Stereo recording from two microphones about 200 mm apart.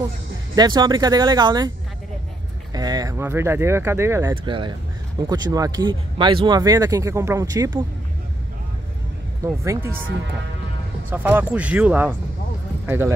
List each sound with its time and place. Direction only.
0.6 s speech: 20° right (ahead or behind)
2.7 s speech: 20° right (ahead or behind)
9.4 s speech: 15° right (ahead or behind)
11.1 s speech: 10° right (ahead or behind)